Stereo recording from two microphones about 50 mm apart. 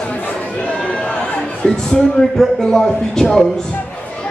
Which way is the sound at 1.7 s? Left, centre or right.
Centre.